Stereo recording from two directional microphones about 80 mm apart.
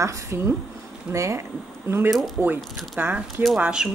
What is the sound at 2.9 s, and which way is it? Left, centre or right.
Speech, right.